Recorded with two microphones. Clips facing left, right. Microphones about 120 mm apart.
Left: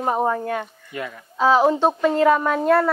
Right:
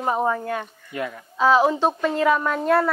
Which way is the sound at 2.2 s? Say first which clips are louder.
Left 2 dB; 60° left (ahead or behind).